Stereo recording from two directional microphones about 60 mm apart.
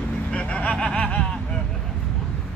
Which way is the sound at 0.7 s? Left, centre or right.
Centre.